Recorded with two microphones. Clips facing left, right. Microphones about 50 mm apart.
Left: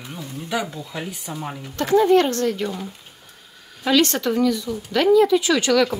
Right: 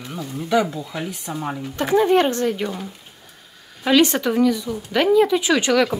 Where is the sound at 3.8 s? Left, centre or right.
Centre.